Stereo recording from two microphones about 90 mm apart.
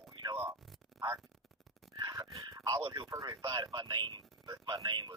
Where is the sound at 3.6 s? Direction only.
55° right (ahead or behind).